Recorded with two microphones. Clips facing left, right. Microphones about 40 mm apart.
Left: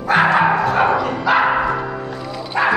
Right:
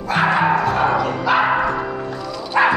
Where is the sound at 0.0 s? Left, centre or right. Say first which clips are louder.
Left 4 dB; left.